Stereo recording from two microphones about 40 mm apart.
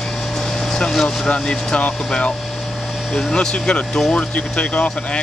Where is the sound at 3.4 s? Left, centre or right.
Centre.